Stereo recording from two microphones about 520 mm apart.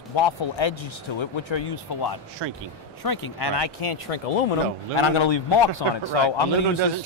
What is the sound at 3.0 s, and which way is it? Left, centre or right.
Speech, left.